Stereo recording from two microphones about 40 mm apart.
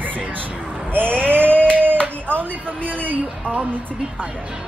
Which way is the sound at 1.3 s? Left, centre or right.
Right.